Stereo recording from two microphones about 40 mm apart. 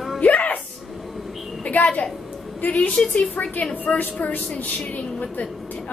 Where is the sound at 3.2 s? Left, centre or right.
Left.